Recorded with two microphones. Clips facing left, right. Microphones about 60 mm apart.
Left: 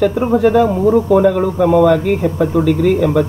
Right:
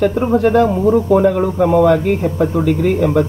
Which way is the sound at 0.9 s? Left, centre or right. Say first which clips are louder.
Left 1 dB; centre.